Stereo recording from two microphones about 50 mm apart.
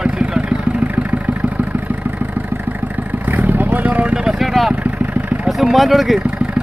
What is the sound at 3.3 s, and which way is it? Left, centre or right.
Vehicle, right.